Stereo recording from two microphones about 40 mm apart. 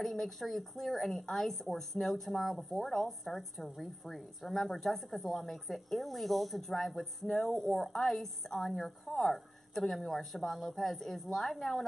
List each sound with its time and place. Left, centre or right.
0.0 s speech: centre